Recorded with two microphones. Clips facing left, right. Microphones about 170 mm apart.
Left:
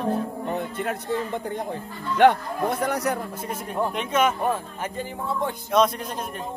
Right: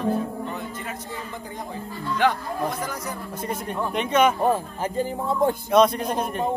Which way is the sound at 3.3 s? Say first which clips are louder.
Even; 5° left (ahead or behind).